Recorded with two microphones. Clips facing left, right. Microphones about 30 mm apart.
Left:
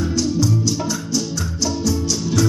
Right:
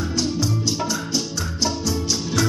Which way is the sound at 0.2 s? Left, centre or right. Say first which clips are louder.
Left 3 dB; right.